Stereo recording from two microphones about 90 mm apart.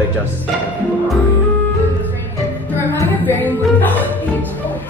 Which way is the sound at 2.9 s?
20° left (ahead or behind).